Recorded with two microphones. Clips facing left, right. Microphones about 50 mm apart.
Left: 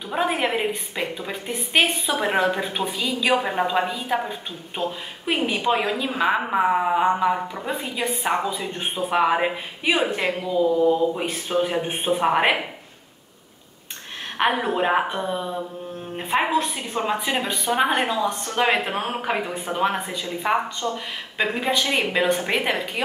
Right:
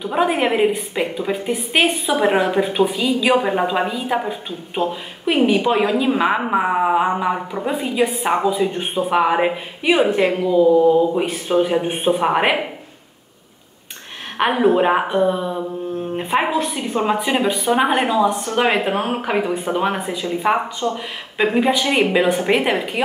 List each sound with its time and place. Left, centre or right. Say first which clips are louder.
0.1 s a woman's voice: right 4 dB; centre
8.2 s a woman's voice: right 4 dB; right
8.5 s a woman's voice: right 8 dB; centre
14.4 s a woman's voice: right 6 dB; centre